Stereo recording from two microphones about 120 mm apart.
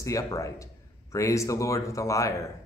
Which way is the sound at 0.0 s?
25° left (ahead or behind).